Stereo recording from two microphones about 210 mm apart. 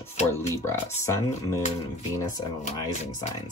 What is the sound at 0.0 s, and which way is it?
Speech, 15° left (ahead or behind).